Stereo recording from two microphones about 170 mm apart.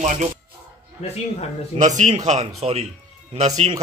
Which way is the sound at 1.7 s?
45° right (ahead or behind).